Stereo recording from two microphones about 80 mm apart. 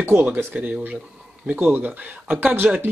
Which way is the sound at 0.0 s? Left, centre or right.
Right.